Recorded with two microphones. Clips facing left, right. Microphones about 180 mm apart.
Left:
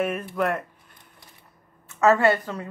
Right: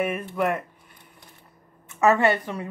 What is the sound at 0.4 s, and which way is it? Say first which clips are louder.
Speech: even; 5° right (ahead or behind).